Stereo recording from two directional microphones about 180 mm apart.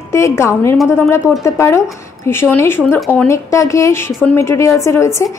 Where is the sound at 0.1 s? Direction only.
15° left (ahead or behind).